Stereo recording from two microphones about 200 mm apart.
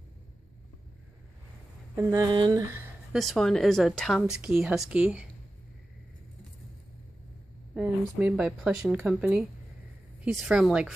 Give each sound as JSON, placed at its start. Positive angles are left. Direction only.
{"t": 2.0, "sound": "speech", "side_deg": -15}
{"t": 3.1, "sound": "a woman's voice", "side_deg": 0}
{"t": 7.7, "sound": "a woman's voice", "side_deg": -5}